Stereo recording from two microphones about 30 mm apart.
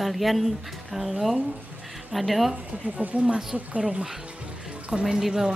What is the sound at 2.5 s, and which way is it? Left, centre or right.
Speech, right.